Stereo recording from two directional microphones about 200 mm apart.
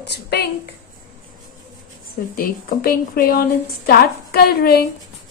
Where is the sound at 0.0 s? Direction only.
55° left (ahead or behind).